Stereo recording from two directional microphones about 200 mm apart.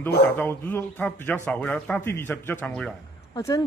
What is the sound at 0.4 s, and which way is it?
Speech, 10° left (ahead or behind).